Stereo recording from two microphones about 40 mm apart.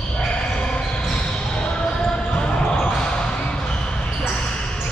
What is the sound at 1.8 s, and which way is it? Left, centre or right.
Basketball bounce, left.